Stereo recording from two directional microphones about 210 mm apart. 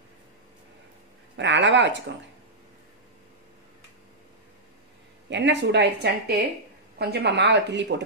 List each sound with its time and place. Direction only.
1.3 s speech: 60° right (ahead or behind)
5.3 s speech: 55° right (ahead or behind)